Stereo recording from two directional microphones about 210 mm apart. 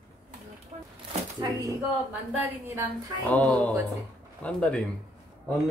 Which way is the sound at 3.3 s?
5° left (ahead or behind).